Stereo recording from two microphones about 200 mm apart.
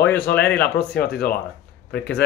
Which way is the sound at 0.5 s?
60° left (ahead or behind).